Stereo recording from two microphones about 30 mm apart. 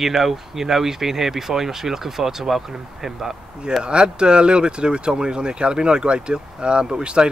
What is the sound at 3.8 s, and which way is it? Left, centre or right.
Speech, right.